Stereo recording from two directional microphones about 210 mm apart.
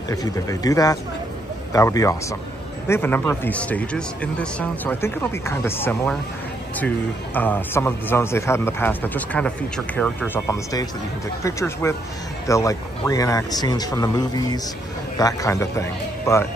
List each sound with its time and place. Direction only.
0.1 s a man's voice: 15° left (ahead or behind)
7.3 s a man's voice: 10° left (ahead or behind)